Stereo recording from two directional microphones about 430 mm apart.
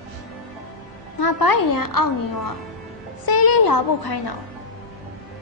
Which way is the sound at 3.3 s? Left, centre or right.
Left.